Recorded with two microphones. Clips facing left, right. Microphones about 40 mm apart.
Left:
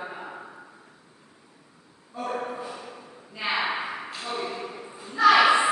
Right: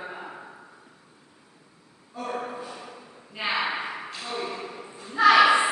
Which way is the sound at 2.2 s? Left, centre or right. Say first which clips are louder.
Left 1 dB; centre.